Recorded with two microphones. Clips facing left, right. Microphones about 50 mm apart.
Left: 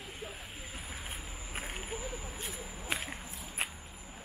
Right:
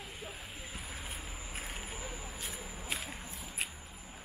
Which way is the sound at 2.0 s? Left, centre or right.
Centre.